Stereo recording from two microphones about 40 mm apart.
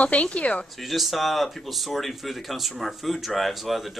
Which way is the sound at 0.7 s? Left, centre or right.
Centre.